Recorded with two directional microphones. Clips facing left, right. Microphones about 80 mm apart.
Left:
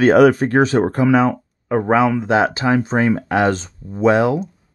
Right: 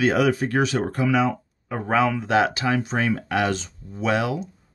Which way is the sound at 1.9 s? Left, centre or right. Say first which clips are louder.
Left 4 dB; left.